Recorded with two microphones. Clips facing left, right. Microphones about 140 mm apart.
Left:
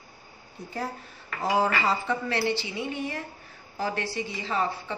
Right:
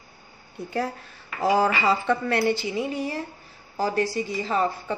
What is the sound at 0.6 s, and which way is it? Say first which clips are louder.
Speech: right 6 dB; 65° right (ahead or behind).